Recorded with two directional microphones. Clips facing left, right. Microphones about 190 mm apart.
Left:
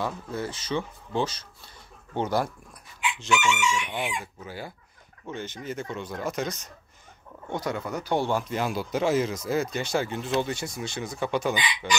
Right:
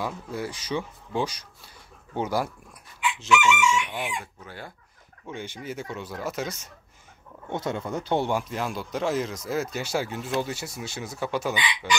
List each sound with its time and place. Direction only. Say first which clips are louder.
0.0 s speech: left 1 dB; 10° right (ahead or behind)
3.3 s chicken: right 3 dB; 25° left (ahead or behind)
3.9 s speech: left 1 dB; centre (ahead or behind)
5.2 s speech: left 1 dB; 10° right (ahead or behind)
7.4 s speech: right 1 dB; 25° right (ahead or behind)
8.4 s speech: left 2 dB; centre (ahead or behind)